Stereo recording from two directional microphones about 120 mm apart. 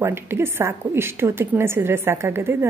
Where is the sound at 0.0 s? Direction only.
20° right (ahead or behind).